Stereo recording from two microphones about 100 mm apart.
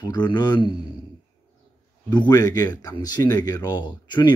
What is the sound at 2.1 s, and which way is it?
Speech, 45° left (ahead or behind).